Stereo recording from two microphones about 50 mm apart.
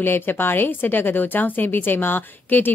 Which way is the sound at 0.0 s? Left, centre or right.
Left.